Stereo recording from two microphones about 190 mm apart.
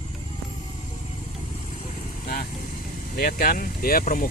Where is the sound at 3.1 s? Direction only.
55° left (ahead or behind).